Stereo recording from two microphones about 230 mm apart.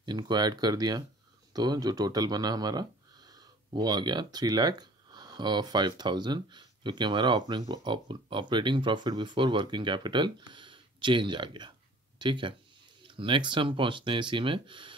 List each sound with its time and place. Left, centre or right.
0.0 s speech: centre